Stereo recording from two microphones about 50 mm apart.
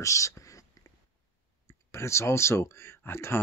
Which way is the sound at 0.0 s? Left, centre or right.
Left.